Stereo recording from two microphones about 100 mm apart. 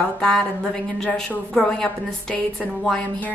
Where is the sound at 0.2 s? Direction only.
5° left (ahead or behind).